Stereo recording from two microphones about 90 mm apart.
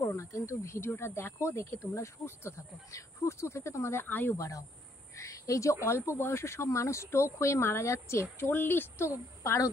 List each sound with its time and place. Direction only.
0.0 s speech: 30° left (ahead or behind)
4.4 s speech: 40° left (ahead or behind)
9.4 s a woman's voice: 35° left (ahead or behind)